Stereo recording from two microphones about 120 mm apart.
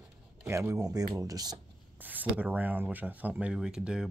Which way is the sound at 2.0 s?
15° right (ahead or behind).